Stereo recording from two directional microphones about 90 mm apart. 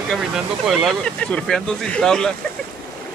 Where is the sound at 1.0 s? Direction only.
10° left (ahead or behind).